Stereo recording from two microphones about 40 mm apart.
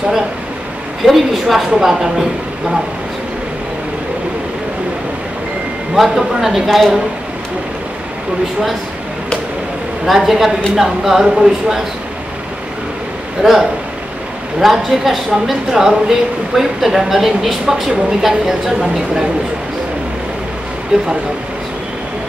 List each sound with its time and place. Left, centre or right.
1.0 s a woman's voice: centre
6.0 s a woman's voice: centre
10.0 s a woman's voice: centre
13.4 s a woman's voice: centre
20.9 s speech: centre